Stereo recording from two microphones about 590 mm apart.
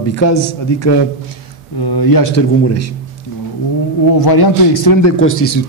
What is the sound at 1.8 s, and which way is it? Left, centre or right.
Speech, left.